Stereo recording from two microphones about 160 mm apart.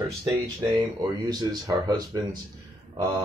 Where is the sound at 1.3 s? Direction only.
25° right (ahead or behind).